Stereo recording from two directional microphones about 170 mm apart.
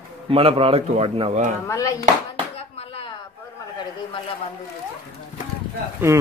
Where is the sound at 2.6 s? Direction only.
35° left (ahead or behind).